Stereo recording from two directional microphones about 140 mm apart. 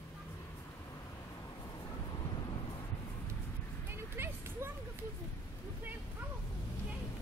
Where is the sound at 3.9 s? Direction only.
15° right (ahead or behind).